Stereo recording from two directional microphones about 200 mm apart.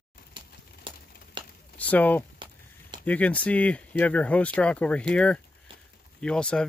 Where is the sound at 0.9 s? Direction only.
25° right (ahead or behind).